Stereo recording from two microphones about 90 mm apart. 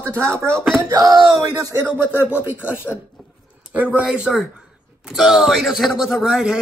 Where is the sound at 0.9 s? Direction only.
50° right (ahead or behind).